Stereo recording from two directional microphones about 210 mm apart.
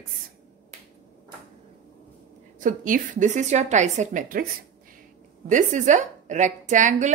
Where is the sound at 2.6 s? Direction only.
40° right (ahead or behind).